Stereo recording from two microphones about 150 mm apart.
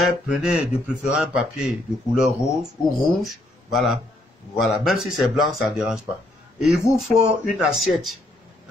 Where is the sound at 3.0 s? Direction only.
Centre (ahead or behind).